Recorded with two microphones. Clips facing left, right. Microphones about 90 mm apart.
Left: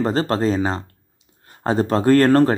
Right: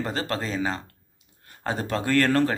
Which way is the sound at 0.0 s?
35° left (ahead or behind).